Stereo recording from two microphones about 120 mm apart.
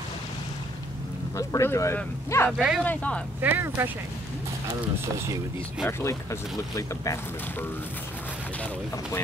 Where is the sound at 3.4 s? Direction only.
15° right (ahead or behind).